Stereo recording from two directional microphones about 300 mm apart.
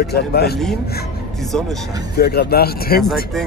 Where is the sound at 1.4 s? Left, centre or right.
Centre.